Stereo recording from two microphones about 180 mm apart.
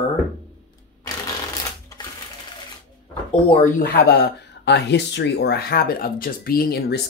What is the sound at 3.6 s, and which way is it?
Speech, 55° left (ahead or behind).